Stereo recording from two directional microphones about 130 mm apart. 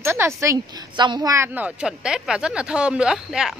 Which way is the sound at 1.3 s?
15° right (ahead or behind).